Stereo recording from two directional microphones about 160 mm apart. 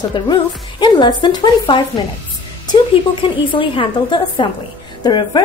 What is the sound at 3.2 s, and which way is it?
A woman's voice, 30° left (ahead or behind).